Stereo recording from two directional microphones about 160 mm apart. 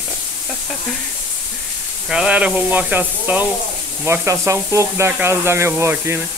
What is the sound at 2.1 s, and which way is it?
Speech, 5° right (ahead or behind).